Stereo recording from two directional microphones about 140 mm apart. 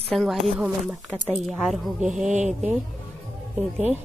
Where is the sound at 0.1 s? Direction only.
Centre (ahead or behind).